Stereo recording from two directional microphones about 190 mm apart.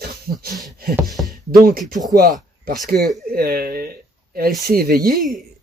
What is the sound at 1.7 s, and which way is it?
Speech, 50° right (ahead or behind).